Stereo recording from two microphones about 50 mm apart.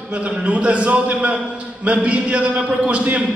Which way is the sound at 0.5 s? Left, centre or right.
Right.